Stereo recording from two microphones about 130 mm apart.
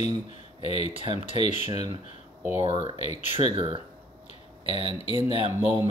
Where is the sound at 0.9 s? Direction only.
45° right (ahead or behind).